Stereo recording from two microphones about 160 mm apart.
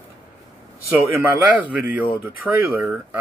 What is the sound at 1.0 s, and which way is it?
Speech, 10° right (ahead or behind).